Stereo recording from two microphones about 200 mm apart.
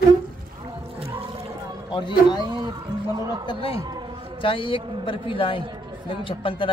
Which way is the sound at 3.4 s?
30° left (ahead or behind).